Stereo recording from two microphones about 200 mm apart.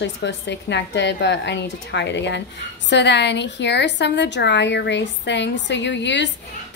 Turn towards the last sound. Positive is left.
turn(degrees=60)  # may be behind; listen again after turning